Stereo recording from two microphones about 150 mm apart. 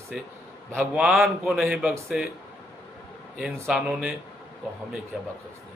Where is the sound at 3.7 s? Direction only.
5° right (ahead or behind).